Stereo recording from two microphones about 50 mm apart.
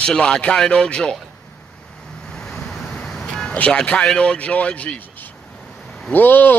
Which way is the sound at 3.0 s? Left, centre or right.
Centre.